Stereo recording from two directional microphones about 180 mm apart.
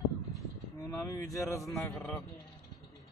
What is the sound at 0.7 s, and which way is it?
Speech, 20° left (ahead or behind).